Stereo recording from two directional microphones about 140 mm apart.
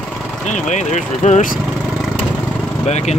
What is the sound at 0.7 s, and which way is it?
Speech, 55° left (ahead or behind).